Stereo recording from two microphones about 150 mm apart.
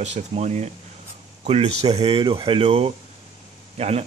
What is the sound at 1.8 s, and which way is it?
Speech, 40° right (ahead or behind).